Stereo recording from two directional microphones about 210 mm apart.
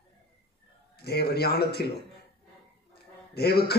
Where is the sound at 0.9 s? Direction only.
50° left (ahead or behind).